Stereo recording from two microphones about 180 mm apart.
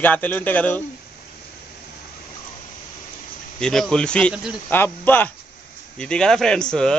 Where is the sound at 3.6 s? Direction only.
5° left (ahead or behind).